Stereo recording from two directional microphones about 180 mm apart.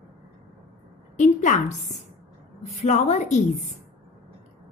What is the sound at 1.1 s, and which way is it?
Speech, 45° left (ahead or behind).